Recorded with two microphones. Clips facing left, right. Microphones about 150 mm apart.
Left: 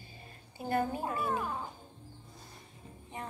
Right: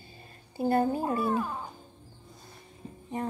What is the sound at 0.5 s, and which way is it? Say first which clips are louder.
Speech: right 6 dB; 35° right (ahead or behind).